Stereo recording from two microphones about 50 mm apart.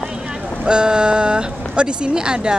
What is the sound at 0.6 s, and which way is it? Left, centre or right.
Speech, centre.